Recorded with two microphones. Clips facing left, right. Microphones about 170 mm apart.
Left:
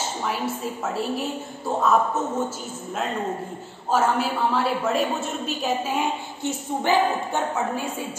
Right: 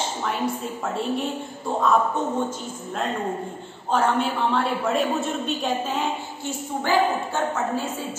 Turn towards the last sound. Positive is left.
turn(degrees=20)  # may be behind; listen again after turning